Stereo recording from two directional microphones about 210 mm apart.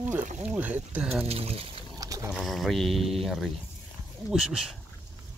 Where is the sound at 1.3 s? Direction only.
30° right (ahead or behind).